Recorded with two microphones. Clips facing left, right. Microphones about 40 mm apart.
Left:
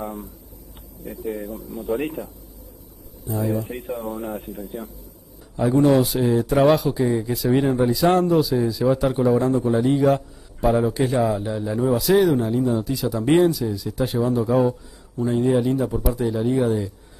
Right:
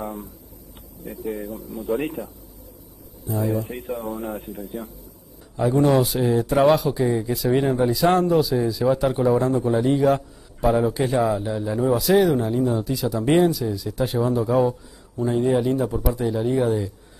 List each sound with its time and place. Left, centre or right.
2.2 s a man's voice: right
3.3 s speech: centre
4.8 s speech: left
5.6 s speech: centre